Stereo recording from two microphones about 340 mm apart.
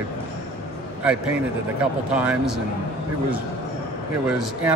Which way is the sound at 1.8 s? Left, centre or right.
Centre.